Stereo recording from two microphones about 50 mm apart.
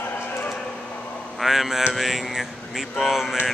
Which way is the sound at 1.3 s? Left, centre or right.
Centre.